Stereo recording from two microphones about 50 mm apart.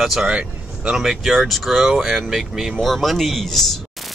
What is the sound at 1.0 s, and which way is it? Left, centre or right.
Speech, centre.